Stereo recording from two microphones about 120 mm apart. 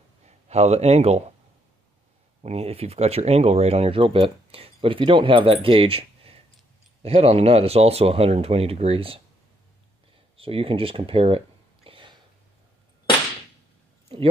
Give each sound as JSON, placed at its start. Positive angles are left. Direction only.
{"t": 0.5, "sound": "speech", "side_deg": -65}
{"t": 2.4, "sound": "speech", "side_deg": -60}
{"t": 10.3, "sound": "a sound", "side_deg": -50}